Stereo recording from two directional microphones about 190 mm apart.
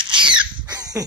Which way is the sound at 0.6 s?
20° right (ahead or behind).